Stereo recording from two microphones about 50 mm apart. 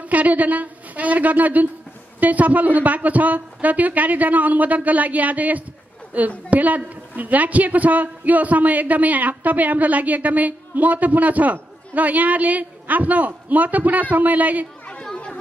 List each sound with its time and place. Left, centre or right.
0.1 s a woman's voice: right
14.9 s chatter: centre